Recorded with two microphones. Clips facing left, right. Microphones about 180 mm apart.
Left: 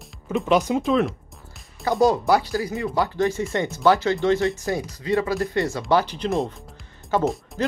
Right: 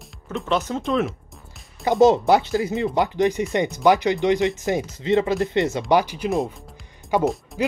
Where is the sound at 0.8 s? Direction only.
Centre (ahead or behind).